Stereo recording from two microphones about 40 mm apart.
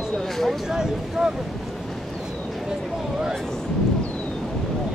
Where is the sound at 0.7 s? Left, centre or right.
Centre.